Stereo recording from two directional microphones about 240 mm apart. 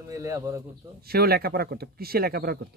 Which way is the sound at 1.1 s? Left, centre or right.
Right.